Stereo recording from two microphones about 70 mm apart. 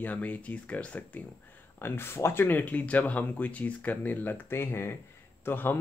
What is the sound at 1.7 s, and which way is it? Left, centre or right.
Speech, left.